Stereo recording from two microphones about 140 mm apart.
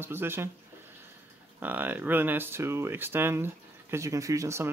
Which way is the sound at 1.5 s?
15° right (ahead or behind).